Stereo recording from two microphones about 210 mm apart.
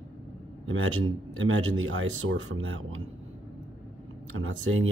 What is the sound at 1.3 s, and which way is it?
Speech, 70° right (ahead or behind).